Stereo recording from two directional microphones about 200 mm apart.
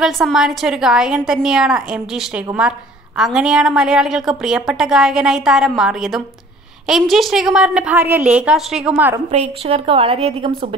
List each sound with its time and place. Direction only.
0.0 s a woman's voice: centre (ahead or behind)
9.3 s a woman's voice: 30° right (ahead or behind)